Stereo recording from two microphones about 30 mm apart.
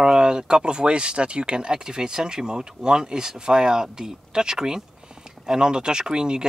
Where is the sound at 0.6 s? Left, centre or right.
Right.